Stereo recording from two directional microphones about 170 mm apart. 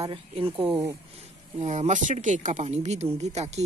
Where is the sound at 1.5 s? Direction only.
40° right (ahead or behind).